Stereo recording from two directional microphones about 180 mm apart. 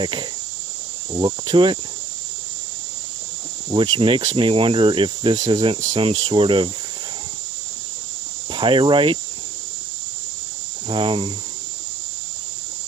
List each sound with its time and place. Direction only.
1.1 s speech: 25° right (ahead or behind)
3.7 s speech: 30° right (ahead or behind)
8.5 s speech: 25° right (ahead or behind)
10.9 s speech: 30° right (ahead or behind)